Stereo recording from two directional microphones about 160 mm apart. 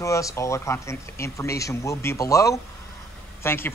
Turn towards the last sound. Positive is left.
turn(degrees=15)  # may be behind; listen again after turning